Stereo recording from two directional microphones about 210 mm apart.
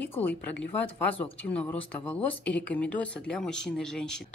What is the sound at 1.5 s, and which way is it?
Speech, 5° left (ahead or behind).